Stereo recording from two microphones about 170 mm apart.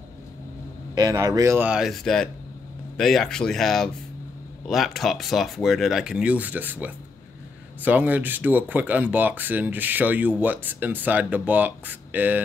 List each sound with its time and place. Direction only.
0.9 s speech: 20° right (ahead or behind)